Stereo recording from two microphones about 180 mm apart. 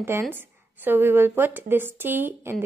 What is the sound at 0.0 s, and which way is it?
Speech, 10° right (ahead or behind).